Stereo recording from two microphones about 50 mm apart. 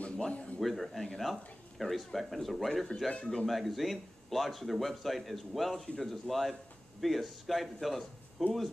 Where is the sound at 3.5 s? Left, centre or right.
Centre.